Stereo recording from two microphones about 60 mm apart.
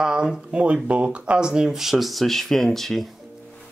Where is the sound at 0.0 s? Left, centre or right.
Centre.